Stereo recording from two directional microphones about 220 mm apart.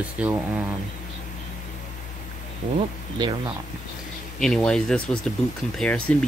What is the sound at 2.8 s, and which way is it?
Speech, 20° right (ahead or behind).